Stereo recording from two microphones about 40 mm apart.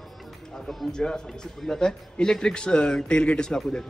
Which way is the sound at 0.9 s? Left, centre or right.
Centre.